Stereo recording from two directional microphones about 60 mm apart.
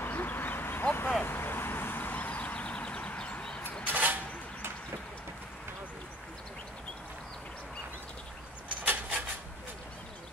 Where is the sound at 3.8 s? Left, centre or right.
Right.